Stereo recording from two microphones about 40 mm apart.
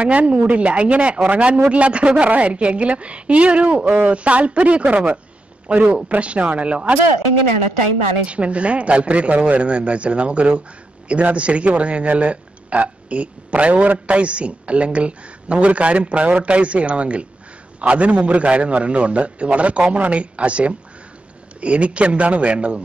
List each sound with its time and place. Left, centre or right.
0.0 s speech: right
3.8 s speech: right
4.1 s speech: right
8.3 s speech: right